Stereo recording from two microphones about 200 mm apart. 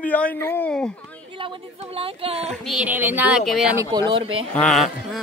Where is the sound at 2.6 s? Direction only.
5° right (ahead or behind).